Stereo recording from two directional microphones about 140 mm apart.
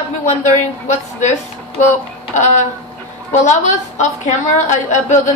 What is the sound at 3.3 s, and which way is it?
A woman's voice, 55° left (ahead or behind).